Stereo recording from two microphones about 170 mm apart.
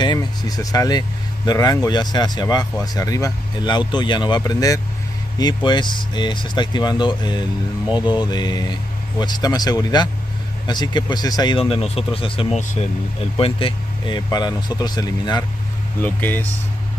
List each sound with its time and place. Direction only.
0.0 s speech: 25° left (ahead or behind)
11.7 s speech: 35° left (ahead or behind)
16.0 s speech: 10° left (ahead or behind)